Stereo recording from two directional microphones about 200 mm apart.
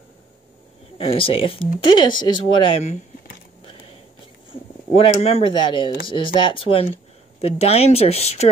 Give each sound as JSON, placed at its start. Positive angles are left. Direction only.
{"t": 1.0, "sound": "speech", "side_deg": 25}
{"t": 4.9, "sound": "speech", "side_deg": 25}